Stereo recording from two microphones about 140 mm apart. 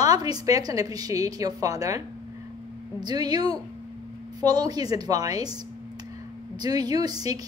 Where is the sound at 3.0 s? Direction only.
30° right (ahead or behind).